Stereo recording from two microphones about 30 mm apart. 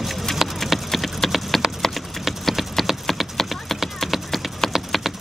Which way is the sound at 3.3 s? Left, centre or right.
Centre.